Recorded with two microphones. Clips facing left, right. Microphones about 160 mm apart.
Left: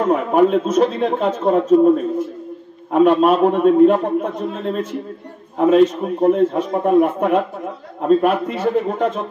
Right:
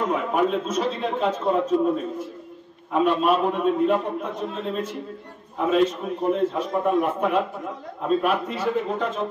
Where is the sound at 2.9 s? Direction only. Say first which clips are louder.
Left 7 dB; 50° left (ahead or behind).